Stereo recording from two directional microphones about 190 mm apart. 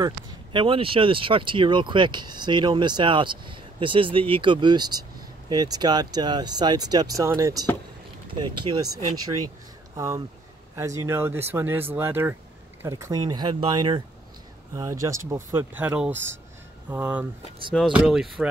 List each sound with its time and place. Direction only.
0.0 s speech: 25° right (ahead or behind)
8.6 s speech: 25° right (ahead or behind); by 18.5 s centre (ahead or behind)